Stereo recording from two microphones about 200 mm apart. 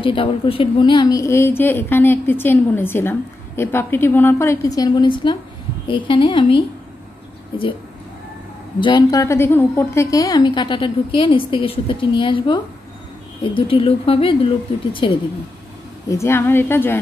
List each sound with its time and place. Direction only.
0.0 s a woman's voice: 25° left (ahead or behind)
8.7 s a woman's voice: 25° left (ahead or behind)
16.1 s a woman's voice: 15° left (ahead or behind)